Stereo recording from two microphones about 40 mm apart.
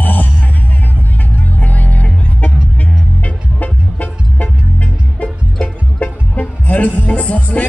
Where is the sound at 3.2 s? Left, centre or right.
Left.